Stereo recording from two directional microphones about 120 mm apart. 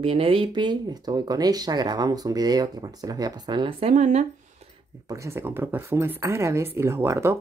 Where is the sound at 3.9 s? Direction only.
75° right (ahead or behind).